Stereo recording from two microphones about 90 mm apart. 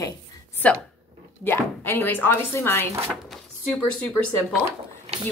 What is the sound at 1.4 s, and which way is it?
A woman's voice, 25° left (ahead or behind).